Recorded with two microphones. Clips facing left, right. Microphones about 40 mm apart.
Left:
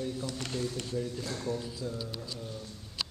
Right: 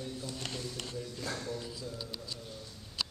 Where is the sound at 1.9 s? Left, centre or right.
Centre.